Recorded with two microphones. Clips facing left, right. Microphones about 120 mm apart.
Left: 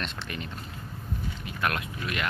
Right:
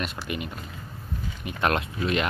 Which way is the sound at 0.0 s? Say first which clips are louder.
Right 4 dB; 10° right (ahead or behind).